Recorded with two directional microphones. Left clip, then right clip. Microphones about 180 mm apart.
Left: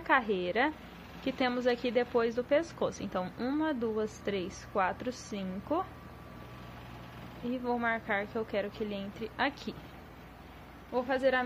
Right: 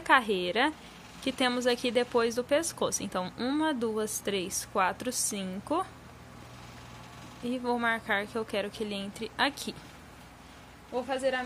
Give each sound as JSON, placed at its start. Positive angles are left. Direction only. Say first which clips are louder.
{"t": 0.0, "sound": "speech", "louder": "right 4 dB", "side_deg": -15}
{"t": 7.4, "sound": "speech", "louder": "right 3 dB", "side_deg": -20}
{"t": 10.9, "sound": "a woman's voice", "louder": "left 1 dB", "side_deg": 10}